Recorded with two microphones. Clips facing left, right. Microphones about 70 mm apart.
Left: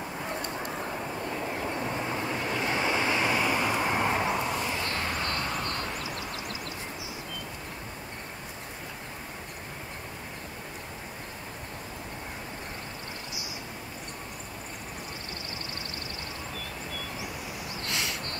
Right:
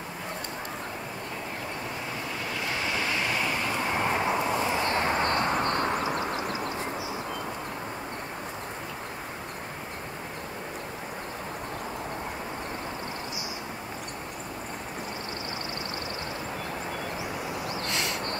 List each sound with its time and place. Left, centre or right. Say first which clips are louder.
2.6 s vehicle: left 2 dB; left; by 4.3 s centre
4.6 s vehicle: right 5 dB; right
17.9 s a sound: even; centre